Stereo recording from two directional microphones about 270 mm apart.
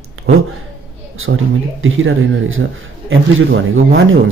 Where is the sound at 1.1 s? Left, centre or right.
Right.